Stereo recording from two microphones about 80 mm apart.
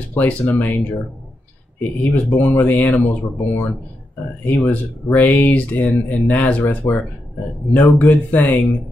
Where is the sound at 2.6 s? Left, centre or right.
Left.